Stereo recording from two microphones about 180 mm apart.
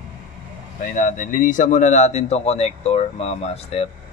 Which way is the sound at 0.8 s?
45° left (ahead or behind).